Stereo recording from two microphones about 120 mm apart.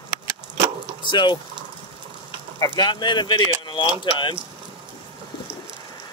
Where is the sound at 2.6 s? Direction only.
35° left (ahead or behind).